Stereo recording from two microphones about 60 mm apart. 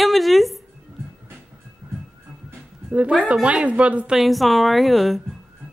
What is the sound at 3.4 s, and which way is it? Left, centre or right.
Speech, centre.